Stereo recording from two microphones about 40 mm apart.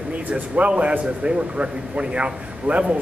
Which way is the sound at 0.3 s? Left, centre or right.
Right.